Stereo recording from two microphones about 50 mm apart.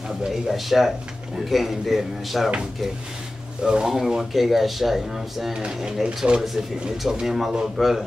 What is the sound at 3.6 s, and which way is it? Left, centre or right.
A man's voice, centre.